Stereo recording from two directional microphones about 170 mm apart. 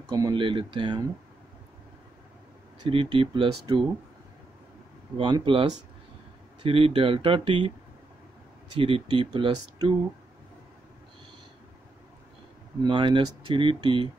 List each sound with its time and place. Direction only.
0.1 s speech: 25° right (ahead or behind)
2.8 s speech: 30° right (ahead or behind)
5.1 s speech: 30° right (ahead or behind)
8.7 s speech: 35° right (ahead or behind)
12.8 s speech: 25° right (ahead or behind)